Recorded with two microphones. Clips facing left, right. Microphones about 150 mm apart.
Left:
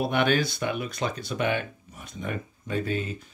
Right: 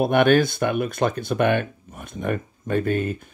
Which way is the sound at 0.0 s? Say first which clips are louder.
Right 7 dB; 55° right (ahead or behind).